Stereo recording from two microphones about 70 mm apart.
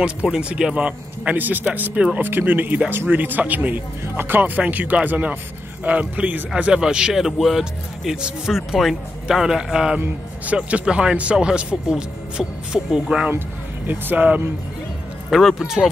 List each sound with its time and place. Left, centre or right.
0.0 s speech: centre
9.9 s speech: right
13.8 s speech: right
15.2 s speech: centre